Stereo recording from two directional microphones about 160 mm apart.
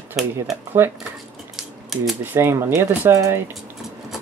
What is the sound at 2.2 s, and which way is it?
Speech, 15° right (ahead or behind).